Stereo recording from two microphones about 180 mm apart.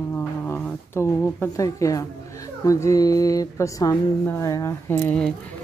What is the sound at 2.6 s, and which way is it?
A woman's voice, 20° left (ahead or behind).